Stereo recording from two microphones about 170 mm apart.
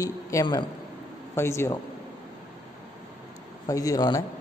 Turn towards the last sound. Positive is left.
turn(degrees=20)  # may be behind; listen again after turning